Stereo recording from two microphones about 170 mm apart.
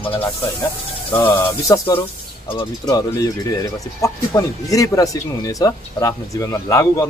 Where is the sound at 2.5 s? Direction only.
25° left (ahead or behind).